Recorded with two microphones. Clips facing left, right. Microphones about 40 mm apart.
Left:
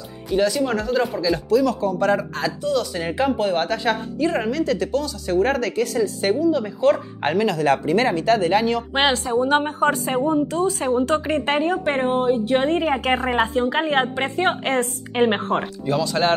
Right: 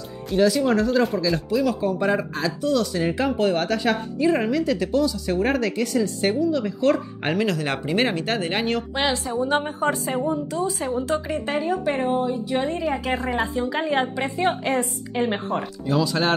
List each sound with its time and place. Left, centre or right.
0.3 s a woman's voice: centre
1.5 s speech: centre
2.3 s speech: centre
4.2 s a woman's voice: centre
7.9 s speech: right
8.9 s a woman's voice: left
9.4 s a woman's voice: left
9.7 s a woman's voice: left
11.1 s a woman's voice: left
11.7 s a woman's voice: left
16.0 s a woman's voice: centre